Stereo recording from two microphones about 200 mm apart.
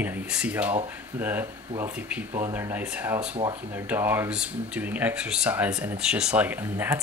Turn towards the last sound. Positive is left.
turn(degrees=-10)  # may be behind; listen again after turning